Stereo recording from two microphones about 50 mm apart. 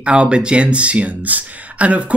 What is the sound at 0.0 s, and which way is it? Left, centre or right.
Speech, centre.